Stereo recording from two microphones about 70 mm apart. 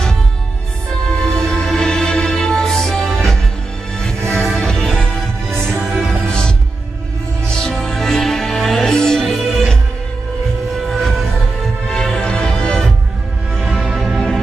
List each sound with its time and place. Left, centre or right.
1.2 s music: centre
4.2 s music: right
4.6 s music: centre
7.5 s music: centre
11.0 s music: centre